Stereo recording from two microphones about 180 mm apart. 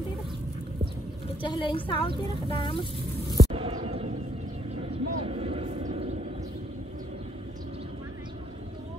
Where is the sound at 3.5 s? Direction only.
30° right (ahead or behind).